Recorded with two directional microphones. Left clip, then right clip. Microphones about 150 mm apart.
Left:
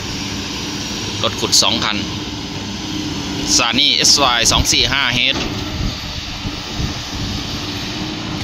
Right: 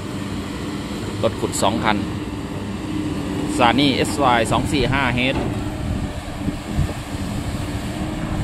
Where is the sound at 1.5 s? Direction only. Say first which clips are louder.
Left 6 dB; 20° right (ahead or behind).